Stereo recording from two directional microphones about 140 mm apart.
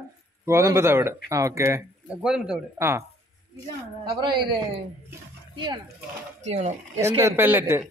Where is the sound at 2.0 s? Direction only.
5° right (ahead or behind).